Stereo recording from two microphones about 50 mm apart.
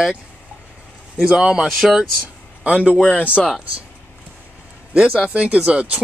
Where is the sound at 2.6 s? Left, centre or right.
Right.